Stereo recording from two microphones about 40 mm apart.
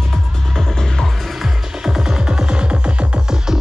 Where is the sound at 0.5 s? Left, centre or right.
Centre.